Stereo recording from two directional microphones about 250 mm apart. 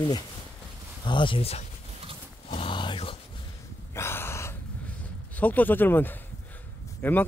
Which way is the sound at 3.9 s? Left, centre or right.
Centre.